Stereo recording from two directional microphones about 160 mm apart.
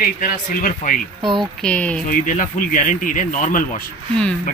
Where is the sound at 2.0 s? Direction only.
55° left (ahead or behind).